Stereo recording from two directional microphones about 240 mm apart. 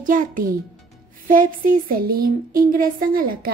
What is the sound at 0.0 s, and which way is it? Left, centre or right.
A woman's voice, right.